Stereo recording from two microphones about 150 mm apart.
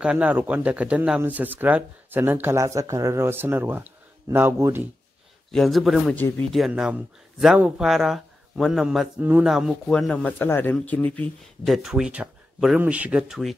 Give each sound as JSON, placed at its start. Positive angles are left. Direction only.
{"t": 0.0, "sound": "speech", "side_deg": -10}
{"t": 5.5, "sound": "speech", "side_deg": 0}
{"t": 6.1, "sound": "speech", "side_deg": 15}
{"t": 6.5, "sound": "speech", "side_deg": 0}
{"t": 9.2, "sound": "speech", "side_deg": -10}
{"t": 11.6, "sound": "speech", "side_deg": 0}